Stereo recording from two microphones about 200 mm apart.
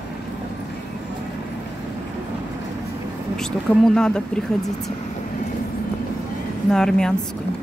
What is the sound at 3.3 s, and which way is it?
Speech, 5° left (ahead or behind).